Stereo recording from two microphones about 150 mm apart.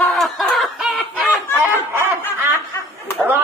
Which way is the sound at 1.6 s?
15° right (ahead or behind).